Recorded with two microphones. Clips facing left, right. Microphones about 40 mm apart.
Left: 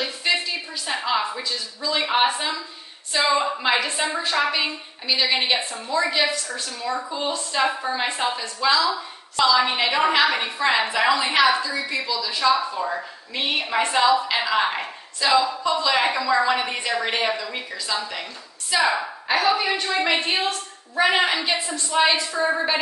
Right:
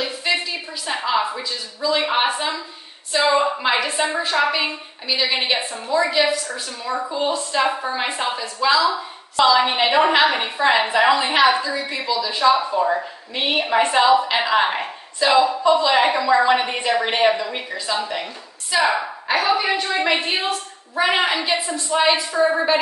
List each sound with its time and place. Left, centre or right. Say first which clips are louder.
0.0 s a sound: right 1 dB; centre
3.1 s a woman's voice: right 3 dB; centre
9.6 s a woman's voice: right 4 dB; right
18.7 s a woman's voice: right 2 dB; centre